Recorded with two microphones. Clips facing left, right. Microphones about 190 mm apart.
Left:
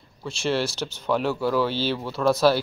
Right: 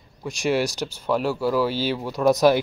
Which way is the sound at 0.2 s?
15° right (ahead or behind).